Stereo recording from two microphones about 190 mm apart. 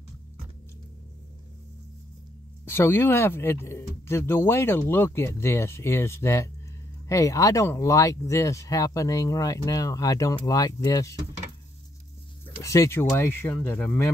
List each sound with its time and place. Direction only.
2.6 s speech: 10° left (ahead or behind)
12.6 s speech: 15° left (ahead or behind)